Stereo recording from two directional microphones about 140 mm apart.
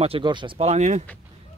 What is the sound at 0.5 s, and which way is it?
Speech, 55° right (ahead or behind).